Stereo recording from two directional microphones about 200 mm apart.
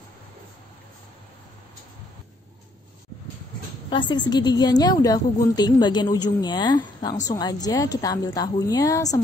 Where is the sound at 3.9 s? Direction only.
20° left (ahead or behind).